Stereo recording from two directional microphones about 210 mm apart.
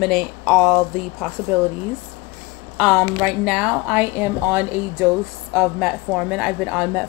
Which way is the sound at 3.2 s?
5° right (ahead or behind).